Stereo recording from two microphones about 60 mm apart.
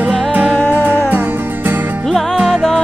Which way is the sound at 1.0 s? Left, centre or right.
Right.